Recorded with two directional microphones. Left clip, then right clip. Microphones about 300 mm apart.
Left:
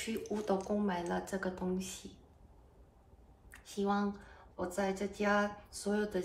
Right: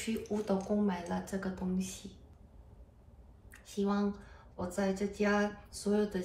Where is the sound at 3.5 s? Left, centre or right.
Centre.